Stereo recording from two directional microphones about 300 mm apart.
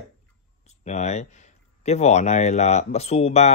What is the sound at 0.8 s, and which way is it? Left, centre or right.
Speech, left.